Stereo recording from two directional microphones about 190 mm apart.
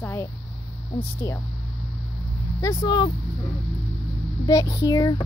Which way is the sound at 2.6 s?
20° left (ahead or behind).